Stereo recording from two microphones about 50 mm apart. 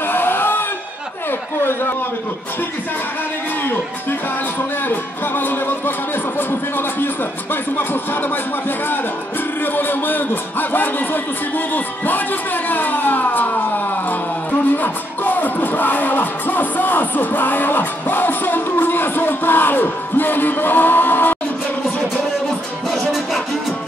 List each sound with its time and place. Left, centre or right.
0.0 s a sound: left
4.8 s speech: left
14.8 s music: left